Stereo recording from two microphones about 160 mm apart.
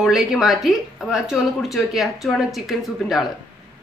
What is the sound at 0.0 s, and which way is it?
A woman's voice, centre (ahead or behind).